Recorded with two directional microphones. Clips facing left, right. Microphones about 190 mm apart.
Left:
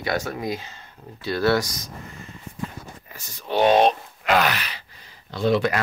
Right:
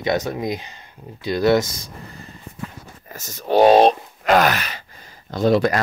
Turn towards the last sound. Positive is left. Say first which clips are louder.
# right 4 dB
turn(degrees=-40)  # may be behind; listen again after turning